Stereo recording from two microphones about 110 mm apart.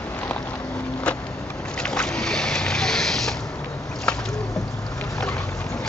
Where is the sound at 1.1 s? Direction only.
10° left (ahead or behind).